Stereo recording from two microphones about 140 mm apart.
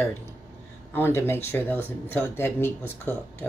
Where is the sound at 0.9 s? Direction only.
15° left (ahead or behind).